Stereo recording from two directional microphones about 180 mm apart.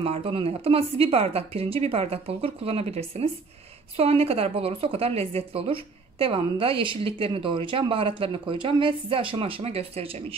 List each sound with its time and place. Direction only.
0.0 s a woman's voice: 30° right (ahead or behind)